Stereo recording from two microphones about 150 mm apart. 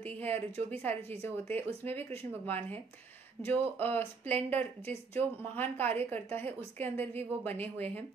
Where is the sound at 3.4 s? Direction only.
25° right (ahead or behind).